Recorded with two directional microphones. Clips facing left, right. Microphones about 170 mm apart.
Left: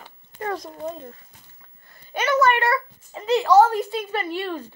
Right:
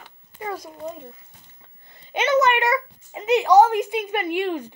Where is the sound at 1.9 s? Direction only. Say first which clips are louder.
Right 3 dB; 20° right (ahead or behind).